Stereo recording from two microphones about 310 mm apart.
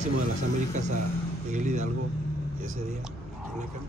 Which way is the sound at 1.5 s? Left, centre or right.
Right.